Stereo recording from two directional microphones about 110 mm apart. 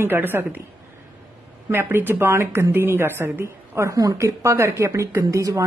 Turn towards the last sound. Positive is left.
turn(degrees=-30)  # may be behind; listen again after turning